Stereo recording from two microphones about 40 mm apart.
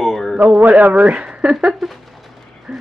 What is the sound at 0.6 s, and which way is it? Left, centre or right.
Speech, right.